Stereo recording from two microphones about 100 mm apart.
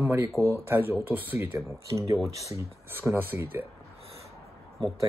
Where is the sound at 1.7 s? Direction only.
30° right (ahead or behind).